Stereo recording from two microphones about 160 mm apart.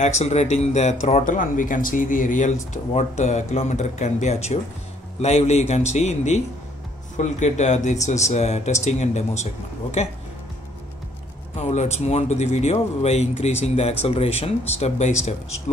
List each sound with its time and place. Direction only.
0.0 s speech: 45° left (ahead or behind)
11.7 s speech: 45° left (ahead or behind)